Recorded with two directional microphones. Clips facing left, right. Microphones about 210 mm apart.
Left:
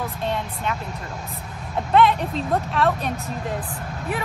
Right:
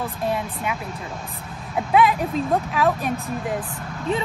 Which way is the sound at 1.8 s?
5° right (ahead or behind).